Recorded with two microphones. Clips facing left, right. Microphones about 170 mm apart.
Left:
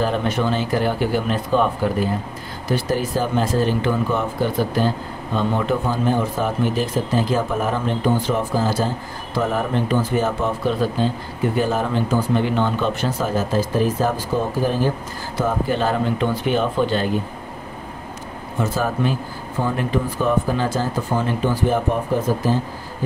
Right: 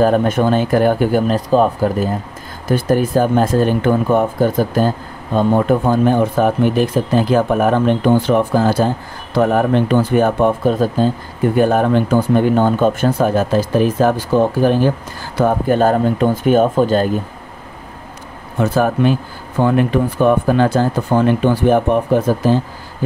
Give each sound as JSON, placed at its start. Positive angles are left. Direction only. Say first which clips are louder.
{"t": 0.0, "sound": "speech", "louder": "right 7 dB", "side_deg": -45}
{"t": 2.7, "sound": "speech", "louder": "right 7 dB", "side_deg": -55}
{"t": 11.5, "sound": "speech", "louder": "right 8 dB", "side_deg": -55}
{"t": 15.3, "sound": "speech", "louder": "right 7 dB", "side_deg": -55}
{"t": 18.6, "sound": "speech", "louder": "right 7 dB", "side_deg": -60}